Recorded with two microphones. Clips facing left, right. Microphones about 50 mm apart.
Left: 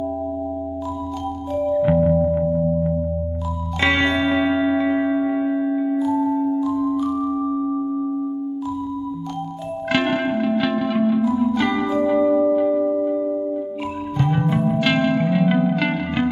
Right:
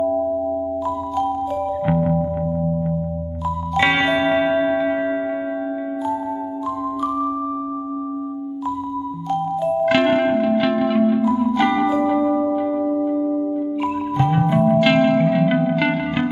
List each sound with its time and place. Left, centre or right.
1.8 s music: centre
3.8 s music: centre
5.1 s music: centre
5.4 s music: centre
6.6 s music: right
9.8 s music: centre
11.8 s music: right
12.3 s music: centre